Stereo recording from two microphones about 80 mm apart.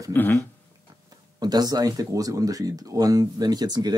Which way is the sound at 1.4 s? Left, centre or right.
Right.